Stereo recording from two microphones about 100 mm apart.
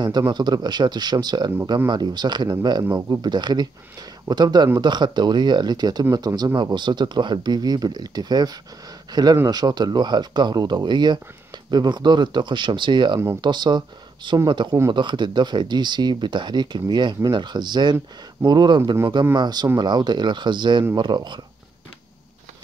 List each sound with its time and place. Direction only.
0.3 s speech: 45° right (ahead or behind)
2.8 s speech: 35° right (ahead or behind)